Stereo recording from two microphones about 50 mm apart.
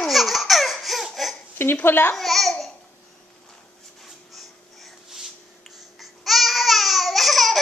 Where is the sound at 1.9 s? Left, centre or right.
Left.